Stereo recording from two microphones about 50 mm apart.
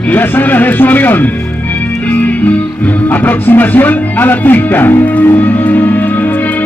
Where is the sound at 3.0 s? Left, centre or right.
Left.